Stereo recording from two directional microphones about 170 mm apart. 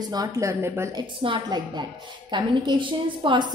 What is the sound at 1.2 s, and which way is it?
A woman's voice, 30° right (ahead or behind).